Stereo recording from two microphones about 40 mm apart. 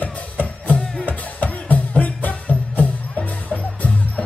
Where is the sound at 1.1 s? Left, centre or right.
Left.